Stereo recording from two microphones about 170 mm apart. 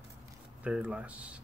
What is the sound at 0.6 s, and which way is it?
Speech, 5° right (ahead or behind).